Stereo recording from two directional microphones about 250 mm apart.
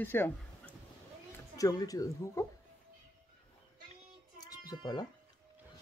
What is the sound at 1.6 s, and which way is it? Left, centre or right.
Speech, centre.